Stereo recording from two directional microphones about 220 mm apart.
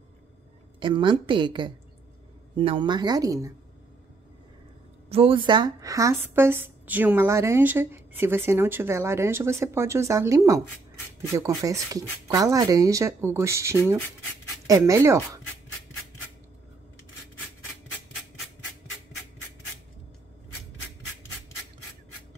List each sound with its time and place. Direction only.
0.7 s speech: 20° right (ahead or behind)
5.1 s a woman's voice: 25° right (ahead or behind)